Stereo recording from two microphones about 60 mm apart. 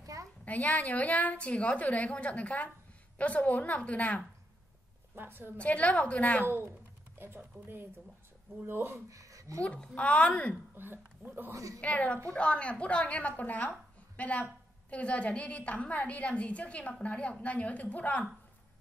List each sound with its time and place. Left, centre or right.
0.0 s a sound: right
0.5 s a woman's voice: left
5.1 s speech: right
5.6 s a woman's voice: left
6.4 s speech: right
9.1 s a sound: right
9.6 s a woman's voice: left
10.8 s speech: right
11.5 s a woman's voice: right
11.8 s a woman's voice: left